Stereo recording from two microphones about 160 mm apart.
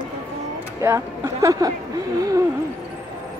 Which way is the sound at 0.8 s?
15° right (ahead or behind).